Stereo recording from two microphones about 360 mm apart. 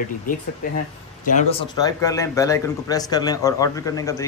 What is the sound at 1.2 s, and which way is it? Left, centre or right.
Speech, left.